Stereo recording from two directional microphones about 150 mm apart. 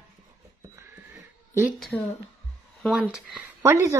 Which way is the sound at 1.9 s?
10° left (ahead or behind).